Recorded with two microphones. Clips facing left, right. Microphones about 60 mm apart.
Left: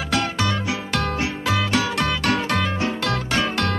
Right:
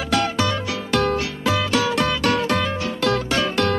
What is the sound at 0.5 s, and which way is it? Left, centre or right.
Music, left.